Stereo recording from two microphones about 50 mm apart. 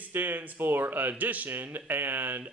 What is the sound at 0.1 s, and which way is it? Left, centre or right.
Speech, right.